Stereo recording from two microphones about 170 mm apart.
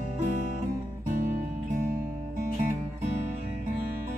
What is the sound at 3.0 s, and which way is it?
Music, 40° right (ahead or behind).